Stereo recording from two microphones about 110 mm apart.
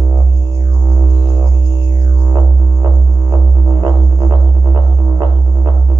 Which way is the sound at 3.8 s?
25° right (ahead or behind).